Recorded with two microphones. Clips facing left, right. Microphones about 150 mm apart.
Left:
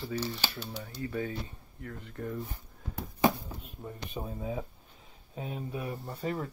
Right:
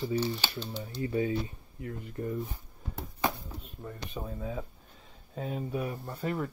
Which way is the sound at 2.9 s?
5° left (ahead or behind).